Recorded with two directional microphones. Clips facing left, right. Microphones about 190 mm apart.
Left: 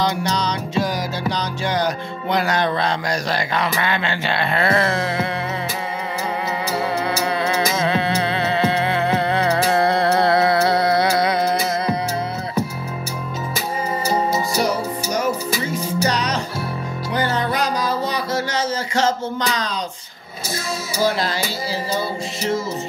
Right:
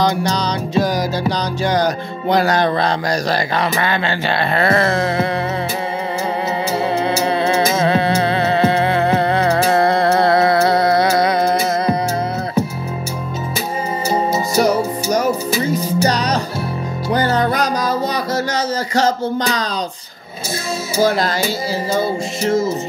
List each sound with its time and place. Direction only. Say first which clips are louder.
0.0 s music: right 4 dB; 35° right (ahead or behind)
6.7 s music: right 4 dB; 25° right (ahead or behind)
7.7 s music: right 4 dB; 40° right (ahead or behind)
14.0 s music: right 3 dB; 25° right (ahead or behind)
15.5 s music: right 5 dB; 30° right (ahead or behind)
21.0 s speech: right 4 dB; 45° right (ahead or behind)